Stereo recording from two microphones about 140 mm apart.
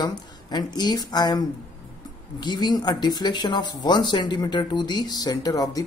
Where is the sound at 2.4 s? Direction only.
30° left (ahead or behind).